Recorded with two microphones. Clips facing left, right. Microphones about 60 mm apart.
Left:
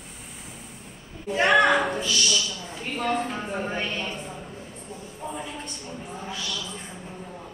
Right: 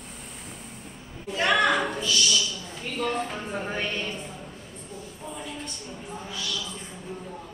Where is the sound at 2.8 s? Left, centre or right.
Left.